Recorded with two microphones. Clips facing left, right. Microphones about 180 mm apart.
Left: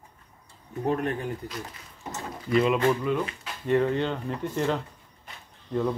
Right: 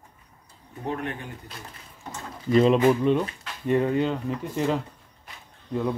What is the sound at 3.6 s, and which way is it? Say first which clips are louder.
Speech: right 1 dB; 15° right (ahead or behind).